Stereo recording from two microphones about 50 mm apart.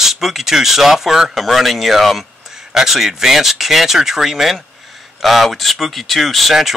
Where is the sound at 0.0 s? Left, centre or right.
Centre.